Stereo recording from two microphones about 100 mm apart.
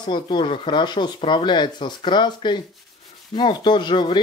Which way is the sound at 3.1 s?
50° left (ahead or behind).